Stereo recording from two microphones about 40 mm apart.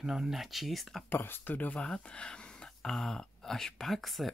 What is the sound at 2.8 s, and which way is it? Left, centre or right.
Speech, centre.